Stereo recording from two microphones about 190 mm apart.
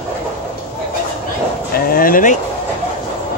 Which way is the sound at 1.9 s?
50° left (ahead or behind).